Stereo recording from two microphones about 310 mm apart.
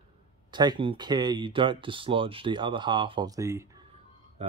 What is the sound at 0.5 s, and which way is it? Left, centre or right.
Speech, centre.